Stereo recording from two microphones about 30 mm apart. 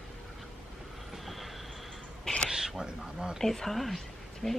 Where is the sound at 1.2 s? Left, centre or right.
Centre.